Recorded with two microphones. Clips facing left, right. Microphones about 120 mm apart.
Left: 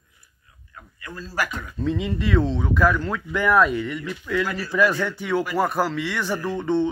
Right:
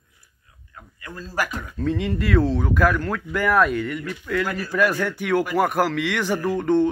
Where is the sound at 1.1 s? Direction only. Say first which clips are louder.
Right 1 dB; 45° right (ahead or behind).